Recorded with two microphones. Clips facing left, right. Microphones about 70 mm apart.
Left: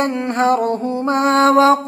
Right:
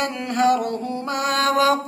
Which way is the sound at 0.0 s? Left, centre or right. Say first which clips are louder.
Left 3 dB; left.